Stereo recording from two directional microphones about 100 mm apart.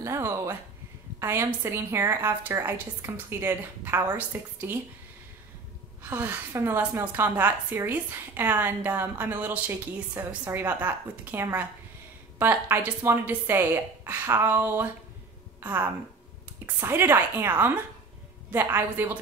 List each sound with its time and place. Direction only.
0.0 s a sound: 30° right (ahead or behind)
1.2 s a woman's voice: 25° right (ahead or behind)
6.0 s a woman's voice: 20° right (ahead or behind)